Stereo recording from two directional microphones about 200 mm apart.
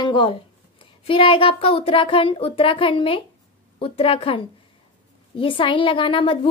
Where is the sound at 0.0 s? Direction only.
25° left (ahead or behind).